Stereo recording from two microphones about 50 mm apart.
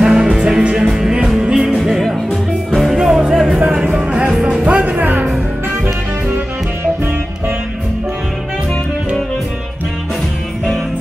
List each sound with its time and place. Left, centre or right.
0.0 s music: centre
3.8 s music: right
4.3 s music: centre
4.6 s music: right